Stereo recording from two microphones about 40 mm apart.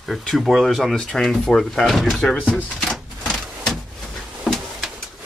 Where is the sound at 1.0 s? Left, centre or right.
Centre.